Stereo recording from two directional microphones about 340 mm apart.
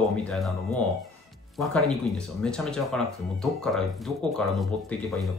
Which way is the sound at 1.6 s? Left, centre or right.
Centre.